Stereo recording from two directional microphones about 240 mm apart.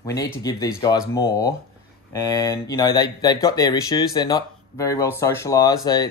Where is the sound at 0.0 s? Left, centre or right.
Centre.